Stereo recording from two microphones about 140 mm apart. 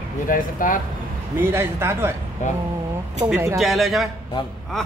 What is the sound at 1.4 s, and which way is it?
Speech, 15° right (ahead or behind).